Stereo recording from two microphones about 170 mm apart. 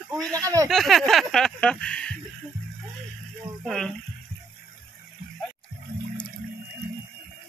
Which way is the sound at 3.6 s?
5° left (ahead or behind).